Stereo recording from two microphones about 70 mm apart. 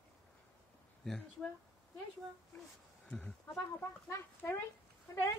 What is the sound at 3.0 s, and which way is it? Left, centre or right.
Speech, centre.